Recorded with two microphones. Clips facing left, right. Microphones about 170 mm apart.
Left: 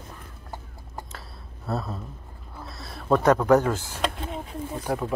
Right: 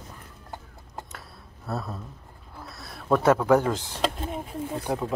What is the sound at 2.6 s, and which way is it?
Speech, centre (ahead or behind).